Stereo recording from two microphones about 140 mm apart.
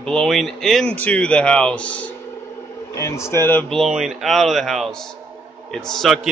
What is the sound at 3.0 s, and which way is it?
Speech, 20° left (ahead or behind).